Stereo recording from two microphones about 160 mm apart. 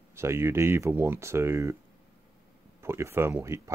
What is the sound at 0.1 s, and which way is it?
Speech, 15° right (ahead or behind).